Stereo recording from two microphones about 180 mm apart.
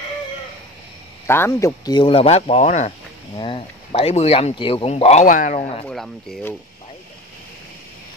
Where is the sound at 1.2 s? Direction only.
15° left (ahead or behind); by 5.2 s 35° left (ahead or behind).